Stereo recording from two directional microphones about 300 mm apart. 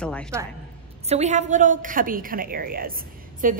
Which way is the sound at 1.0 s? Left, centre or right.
Right.